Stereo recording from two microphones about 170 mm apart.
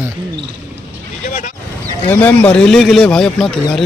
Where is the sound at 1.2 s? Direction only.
45° left (ahead or behind).